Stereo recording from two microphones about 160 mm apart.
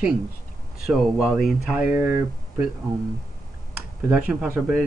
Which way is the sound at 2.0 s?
15° right (ahead or behind).